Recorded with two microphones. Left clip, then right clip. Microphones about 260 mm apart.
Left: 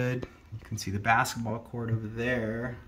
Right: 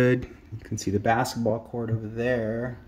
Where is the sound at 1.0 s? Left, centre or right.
Left.